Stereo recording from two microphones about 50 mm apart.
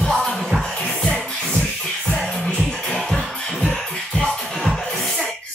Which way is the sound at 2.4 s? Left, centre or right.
Centre.